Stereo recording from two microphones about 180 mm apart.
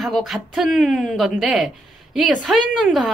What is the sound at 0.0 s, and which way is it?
A woman's voice, centre (ahead or behind).